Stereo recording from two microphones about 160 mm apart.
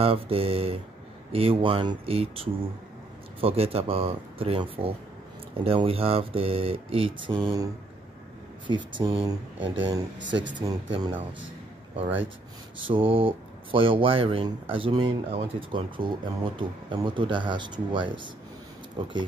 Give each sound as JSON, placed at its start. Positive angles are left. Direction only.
{"t": 0.0, "sound": "speech", "side_deg": -35}
{"t": 12.7, "sound": "speech", "side_deg": -35}